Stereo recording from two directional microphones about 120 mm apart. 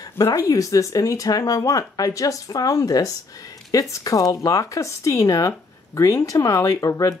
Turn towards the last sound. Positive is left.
turn(degrees=25)  # may be behind; listen again after turning